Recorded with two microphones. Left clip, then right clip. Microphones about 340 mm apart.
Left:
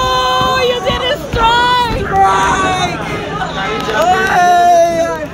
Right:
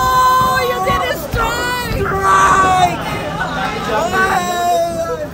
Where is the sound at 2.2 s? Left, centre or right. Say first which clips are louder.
Even; centre.